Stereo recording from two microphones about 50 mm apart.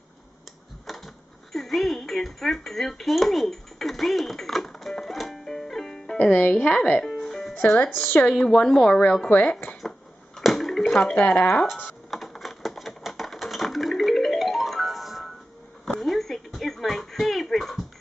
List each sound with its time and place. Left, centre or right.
0.8 s a sound: centre
6.1 s speech: left
7.1 s music: centre
7.8 s a woman's voice: left
8.5 s speech: centre
9.3 s a woman's voice: left
9.8 s a sound: centre
10.9 s speech: centre
11.1 s a woman's voice: left
12.1 s a sound: centre